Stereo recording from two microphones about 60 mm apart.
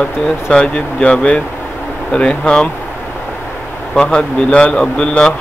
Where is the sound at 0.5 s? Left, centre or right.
Centre.